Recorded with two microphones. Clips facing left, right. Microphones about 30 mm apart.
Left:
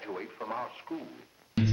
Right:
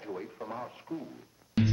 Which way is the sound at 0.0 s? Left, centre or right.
Left.